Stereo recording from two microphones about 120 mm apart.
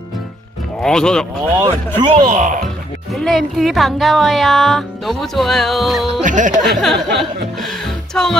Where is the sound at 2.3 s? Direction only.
90° right.